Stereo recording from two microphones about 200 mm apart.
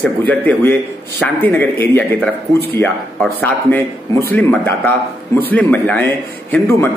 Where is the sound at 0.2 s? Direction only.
10° left (ahead or behind).